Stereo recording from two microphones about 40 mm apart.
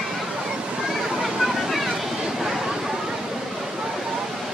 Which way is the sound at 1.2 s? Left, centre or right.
Centre.